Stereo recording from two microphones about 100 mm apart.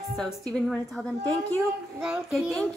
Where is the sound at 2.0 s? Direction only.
15° right (ahead or behind).